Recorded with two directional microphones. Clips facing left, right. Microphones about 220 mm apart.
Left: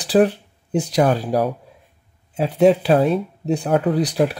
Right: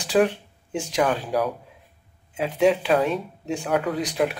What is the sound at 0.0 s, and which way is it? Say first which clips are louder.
Speech: left 4 dB; 35° left (ahead or behind).